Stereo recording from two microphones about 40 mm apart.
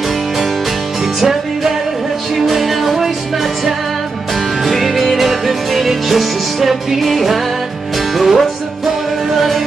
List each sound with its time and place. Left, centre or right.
1.0 s music: centre
4.6 s music: centre